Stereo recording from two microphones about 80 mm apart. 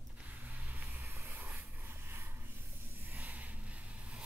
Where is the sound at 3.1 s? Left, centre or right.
Centre.